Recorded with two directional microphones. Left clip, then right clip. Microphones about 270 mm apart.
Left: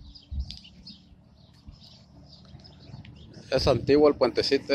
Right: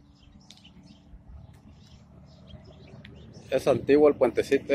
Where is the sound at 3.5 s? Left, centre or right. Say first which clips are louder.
Even; centre.